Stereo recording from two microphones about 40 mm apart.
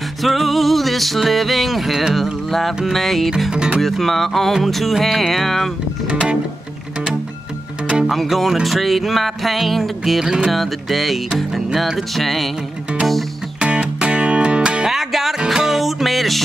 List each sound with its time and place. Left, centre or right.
0.2 s music: centre
3.5 s speech: right
3.8 s music: centre
8.0 s speech: centre
8.6 s music: centre
10.2 s music: centre
10.5 s music: centre
13.6 s music: right
14.9 s music: centre